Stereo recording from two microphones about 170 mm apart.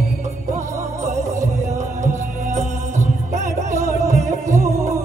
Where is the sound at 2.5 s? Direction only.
45° right (ahead or behind).